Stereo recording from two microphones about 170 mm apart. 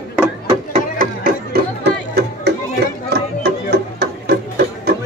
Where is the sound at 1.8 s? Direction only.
75° right (ahead or behind).